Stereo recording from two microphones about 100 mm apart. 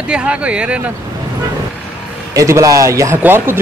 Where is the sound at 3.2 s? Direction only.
20° right (ahead or behind).